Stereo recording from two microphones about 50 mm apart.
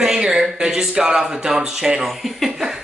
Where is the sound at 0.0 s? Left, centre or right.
Centre.